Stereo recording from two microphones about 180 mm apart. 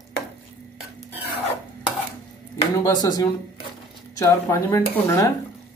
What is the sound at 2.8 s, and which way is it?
Speech, 20° left (ahead or behind).